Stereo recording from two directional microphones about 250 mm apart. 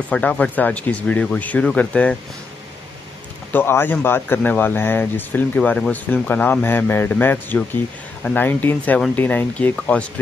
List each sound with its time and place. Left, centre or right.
0.1 s speech: centre
3.5 s speech: centre